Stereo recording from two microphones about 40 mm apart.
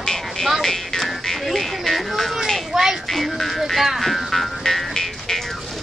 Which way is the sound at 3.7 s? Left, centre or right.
Centre.